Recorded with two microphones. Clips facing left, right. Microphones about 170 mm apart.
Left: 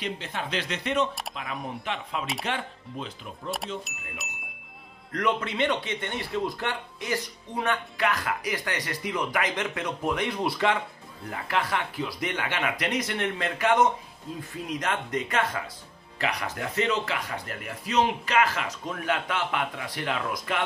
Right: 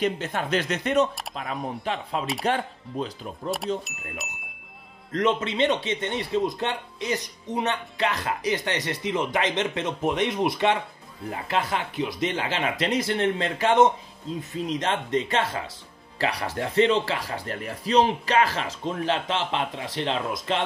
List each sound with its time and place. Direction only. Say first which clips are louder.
0.0 s speech: right 7 dB; 45° right (ahead or behind)
3.4 s speech: right 5 dB; centre (ahead or behind)
5.1 s speech: right 3 dB; 20° right (ahead or behind)